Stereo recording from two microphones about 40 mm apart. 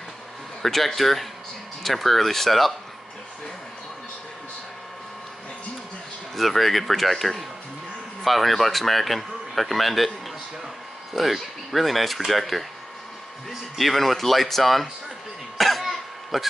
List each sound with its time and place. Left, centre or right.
0.6 s speech: centre
6.3 s speech: centre
11.1 s speech: centre
13.7 s speech: centre
15.5 s cough: centre